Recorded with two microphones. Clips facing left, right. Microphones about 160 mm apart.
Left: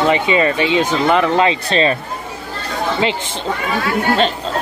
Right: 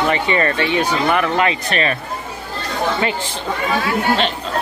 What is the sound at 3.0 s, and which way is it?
Speech, 20° left (ahead or behind).